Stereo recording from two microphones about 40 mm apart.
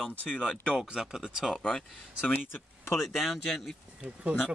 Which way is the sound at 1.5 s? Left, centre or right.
Centre.